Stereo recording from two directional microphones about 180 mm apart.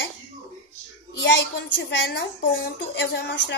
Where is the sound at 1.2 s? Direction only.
75° left (ahead or behind).